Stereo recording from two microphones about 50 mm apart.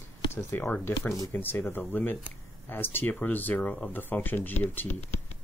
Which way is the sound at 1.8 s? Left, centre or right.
Left.